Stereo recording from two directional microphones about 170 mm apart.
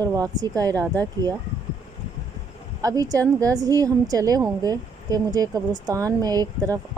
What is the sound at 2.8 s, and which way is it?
A woman's voice, 20° right (ahead or behind).